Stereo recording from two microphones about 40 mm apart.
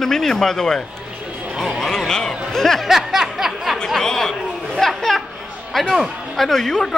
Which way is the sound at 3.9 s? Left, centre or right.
Centre.